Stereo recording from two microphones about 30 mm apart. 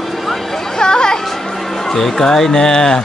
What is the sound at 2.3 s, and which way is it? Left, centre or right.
Music, centre.